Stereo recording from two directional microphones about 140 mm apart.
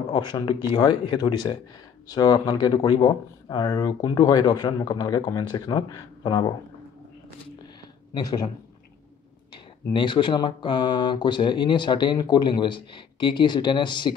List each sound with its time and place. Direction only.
0.1 s speech: 30° left (ahead or behind)
8.1 s speech: 25° left (ahead or behind)
9.9 s speech: 35° left (ahead or behind)